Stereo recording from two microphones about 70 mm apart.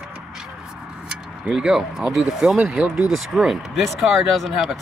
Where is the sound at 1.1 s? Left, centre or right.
Centre.